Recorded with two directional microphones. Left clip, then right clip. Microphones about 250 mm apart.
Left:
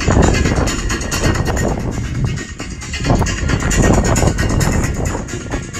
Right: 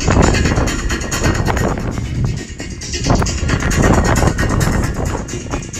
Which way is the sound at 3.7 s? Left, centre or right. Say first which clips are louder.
Right 1 dB; left.